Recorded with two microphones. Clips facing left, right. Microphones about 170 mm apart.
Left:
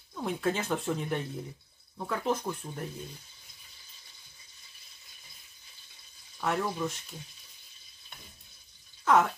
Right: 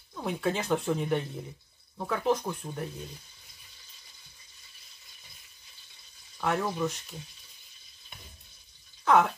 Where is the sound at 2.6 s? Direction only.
20° right (ahead or behind).